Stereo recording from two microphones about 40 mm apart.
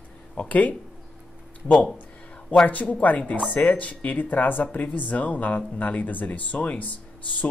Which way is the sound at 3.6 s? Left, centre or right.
Left.